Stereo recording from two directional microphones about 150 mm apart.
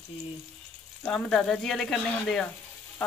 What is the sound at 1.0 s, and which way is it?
Speech, centre (ahead or behind).